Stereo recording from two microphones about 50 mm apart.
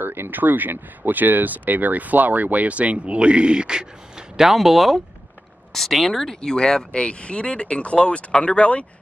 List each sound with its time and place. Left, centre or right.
0.0 s speech: right; by 3.8 s centre
4.4 s speech: centre; by 8.8 s left